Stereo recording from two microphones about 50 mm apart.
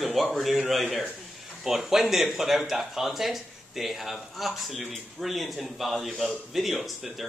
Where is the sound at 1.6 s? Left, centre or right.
Centre.